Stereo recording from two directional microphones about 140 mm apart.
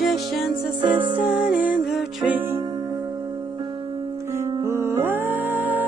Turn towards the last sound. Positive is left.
turn(degrees=-10)  # may be behind; listen again after turning